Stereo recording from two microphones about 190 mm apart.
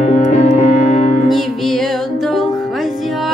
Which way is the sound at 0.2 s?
40° left (ahead or behind).